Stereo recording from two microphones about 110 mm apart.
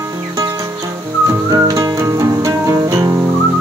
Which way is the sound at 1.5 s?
35° right (ahead or behind).